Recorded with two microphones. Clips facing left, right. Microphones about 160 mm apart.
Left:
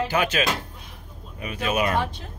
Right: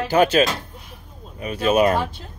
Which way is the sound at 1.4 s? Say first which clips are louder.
Right 7 dB; 35° right (ahead or behind).